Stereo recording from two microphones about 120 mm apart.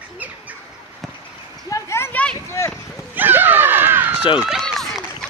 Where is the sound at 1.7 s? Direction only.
25° left (ahead or behind).